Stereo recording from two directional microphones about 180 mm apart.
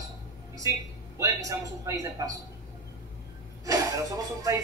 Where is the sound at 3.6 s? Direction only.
20° right (ahead or behind).